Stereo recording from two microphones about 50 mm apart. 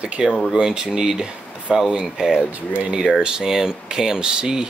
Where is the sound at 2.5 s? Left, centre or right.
Right.